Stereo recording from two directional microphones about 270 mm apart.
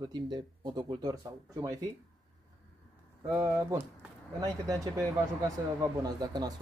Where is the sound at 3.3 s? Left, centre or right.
Centre.